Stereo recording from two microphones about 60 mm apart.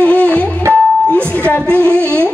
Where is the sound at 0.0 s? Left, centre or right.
Left.